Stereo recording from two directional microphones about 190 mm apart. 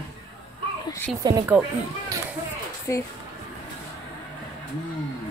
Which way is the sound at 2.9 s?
15° left (ahead or behind).